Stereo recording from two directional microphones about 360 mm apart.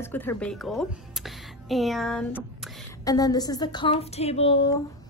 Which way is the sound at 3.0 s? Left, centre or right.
Centre.